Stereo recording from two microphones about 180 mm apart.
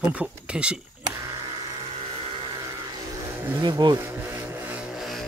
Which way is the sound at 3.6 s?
25° right (ahead or behind).